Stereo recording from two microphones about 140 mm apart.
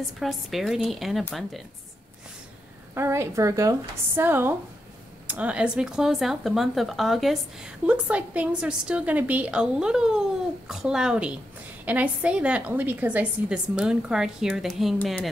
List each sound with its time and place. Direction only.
0.2 s speech: centre (ahead or behind)
2.9 s a woman's voice: 20° right (ahead or behind); by 15.0 s centre (ahead or behind)